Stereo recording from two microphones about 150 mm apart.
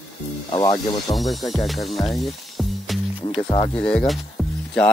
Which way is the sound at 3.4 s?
35° left (ahead or behind).